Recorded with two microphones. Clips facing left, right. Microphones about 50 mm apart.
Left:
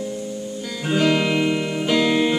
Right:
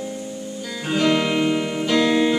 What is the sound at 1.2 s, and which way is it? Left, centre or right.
Music, centre.